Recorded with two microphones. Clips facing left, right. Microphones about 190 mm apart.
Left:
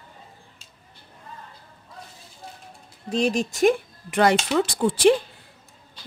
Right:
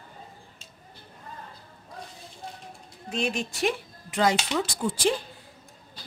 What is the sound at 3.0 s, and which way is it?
Speech, 35° left (ahead or behind).